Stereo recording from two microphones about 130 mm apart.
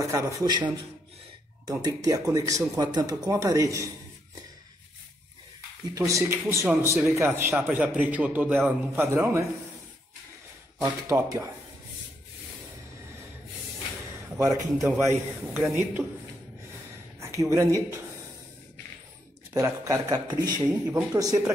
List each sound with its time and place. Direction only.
0.0 s a man's voice: 25° right (ahead or behind)
1.7 s a man's voice: 30° right (ahead or behind)
5.9 s a man's voice: 25° right (ahead or behind)
11.1 s a man's voice: 20° right (ahead or behind)
14.3 s a man's voice: 20° right (ahead or behind)
17.4 s a man's voice: 25° right (ahead or behind)
19.5 s a man's voice: 25° right (ahead or behind)